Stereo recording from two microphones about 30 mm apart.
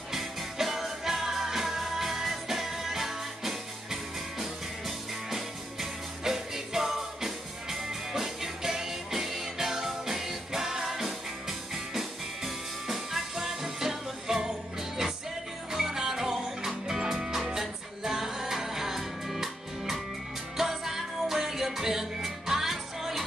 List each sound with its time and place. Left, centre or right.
0.1 s music: centre